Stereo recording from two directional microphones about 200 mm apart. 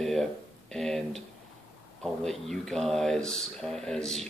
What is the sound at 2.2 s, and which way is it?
Speech, centre (ahead or behind).